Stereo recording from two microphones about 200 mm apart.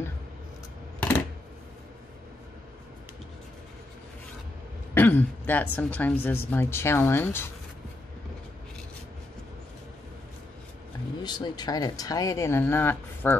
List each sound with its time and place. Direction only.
4.9 s speech: 10° left (ahead or behind)
11.2 s speech: 20° left (ahead or behind)